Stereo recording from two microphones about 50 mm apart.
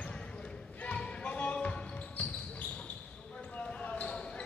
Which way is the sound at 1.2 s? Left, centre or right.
Left.